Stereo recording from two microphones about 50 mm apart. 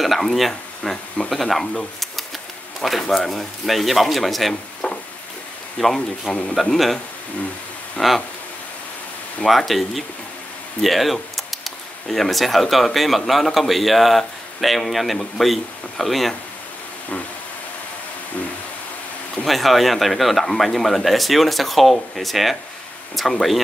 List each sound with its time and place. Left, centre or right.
0.0 s speech: centre
2.8 s speech: centre
4.8 s a sound: left
5.9 s speech: centre
6.5 s speech: centre
8.0 s speech: centre
9.5 s speech: centre
19.4 s speech: centre